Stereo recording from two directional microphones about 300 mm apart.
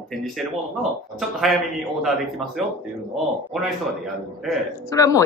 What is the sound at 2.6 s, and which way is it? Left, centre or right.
Speech, centre.